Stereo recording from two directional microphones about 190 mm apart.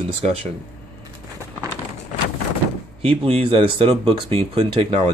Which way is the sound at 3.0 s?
30° right (ahead or behind).